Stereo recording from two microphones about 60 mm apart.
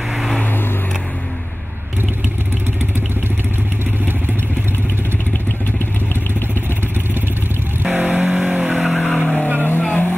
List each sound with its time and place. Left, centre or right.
7.8 s vehicle: right
8.3 s vehicle: centre
9.0 s vehicle: centre
9.6 s vehicle: left